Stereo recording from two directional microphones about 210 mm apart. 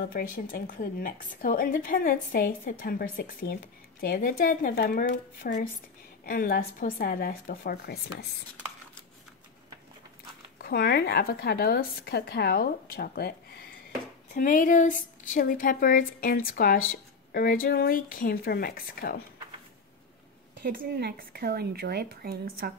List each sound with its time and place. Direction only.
0.1 s a woman's voice: 40° left (ahead or behind)
10.6 s a woman's voice: 50° left (ahead or behind)
20.6 s speech: 45° right (ahead or behind)